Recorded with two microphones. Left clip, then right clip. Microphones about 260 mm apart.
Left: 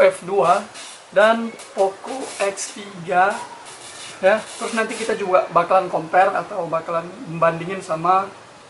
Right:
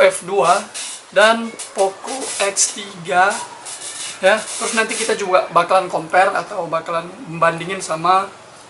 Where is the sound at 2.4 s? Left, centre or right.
Centre.